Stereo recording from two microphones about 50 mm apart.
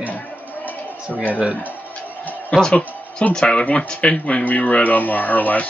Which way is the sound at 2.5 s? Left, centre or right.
Centre.